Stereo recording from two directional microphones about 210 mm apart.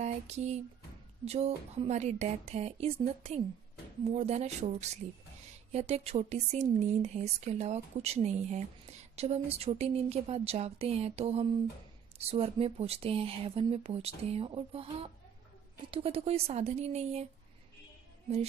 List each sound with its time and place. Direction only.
0.0 s a sound: 30° right (ahead or behind)
1.2 s speech: 30° right (ahead or behind)
15.9 s speech: 30° right (ahead or behind)